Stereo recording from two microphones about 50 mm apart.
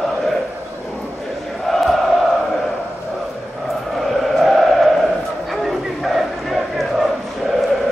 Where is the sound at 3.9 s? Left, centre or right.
Centre.